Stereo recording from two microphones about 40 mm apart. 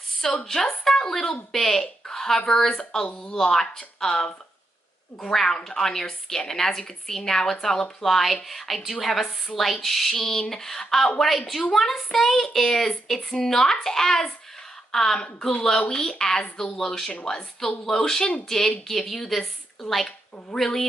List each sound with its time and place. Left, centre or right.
0.5 s a woman's voice: centre